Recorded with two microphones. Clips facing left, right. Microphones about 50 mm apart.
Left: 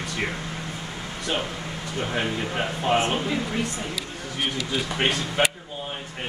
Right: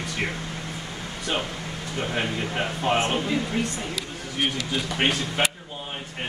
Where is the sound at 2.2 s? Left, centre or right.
Centre.